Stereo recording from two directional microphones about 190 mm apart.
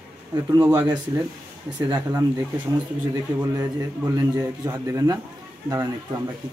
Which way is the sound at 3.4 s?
20° right (ahead or behind).